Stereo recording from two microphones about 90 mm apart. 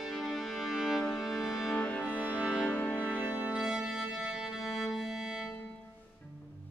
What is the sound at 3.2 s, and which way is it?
Music, 20° right (ahead or behind).